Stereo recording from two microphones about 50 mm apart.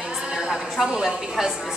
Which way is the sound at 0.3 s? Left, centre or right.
Centre.